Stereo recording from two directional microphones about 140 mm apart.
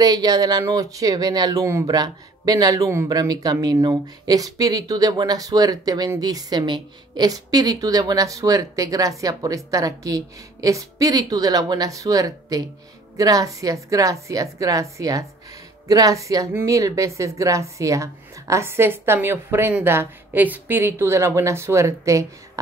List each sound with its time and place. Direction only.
0.0 s a woman's voice: 30° right (ahead or behind)